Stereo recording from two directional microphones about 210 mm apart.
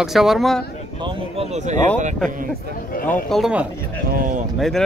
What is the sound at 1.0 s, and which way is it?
Speech, 30° right (ahead or behind).